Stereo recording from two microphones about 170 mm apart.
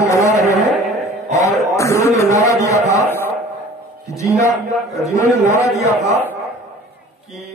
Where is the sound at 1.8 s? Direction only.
20° left (ahead or behind).